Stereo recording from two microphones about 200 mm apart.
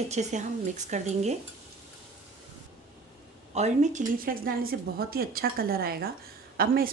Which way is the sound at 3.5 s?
35° right (ahead or behind).